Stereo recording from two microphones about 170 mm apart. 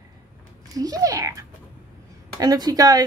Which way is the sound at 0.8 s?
20° right (ahead or behind).